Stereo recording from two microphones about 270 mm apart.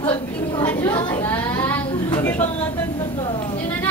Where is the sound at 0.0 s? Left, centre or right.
Centre.